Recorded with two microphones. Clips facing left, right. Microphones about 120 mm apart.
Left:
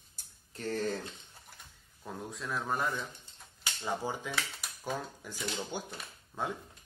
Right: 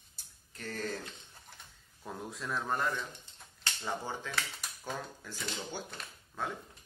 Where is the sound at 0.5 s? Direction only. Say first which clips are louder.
Left 5 dB; 30° left (ahead or behind).